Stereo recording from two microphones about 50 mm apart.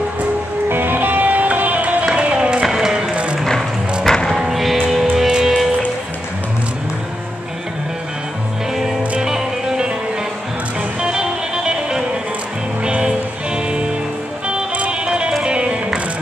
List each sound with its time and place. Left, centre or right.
0.7 s music: right; by 2.6 s centre
2.6 s music: centre
4.0 s music: centre
4.4 s music: centre
9.2 s music: centre
11.0 s music: centre
14.5 s music: right